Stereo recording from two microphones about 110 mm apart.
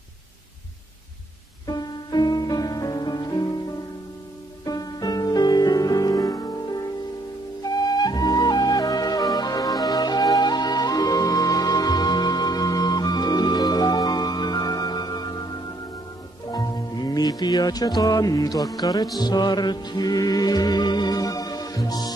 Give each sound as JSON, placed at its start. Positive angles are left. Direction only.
{"t": 1.7, "sound": "music", "side_deg": 40}
{"t": 4.6, "sound": "music", "side_deg": 35}
{"t": 7.9, "sound": "music", "side_deg": 35}
{"t": 16.4, "sound": "music", "side_deg": 40}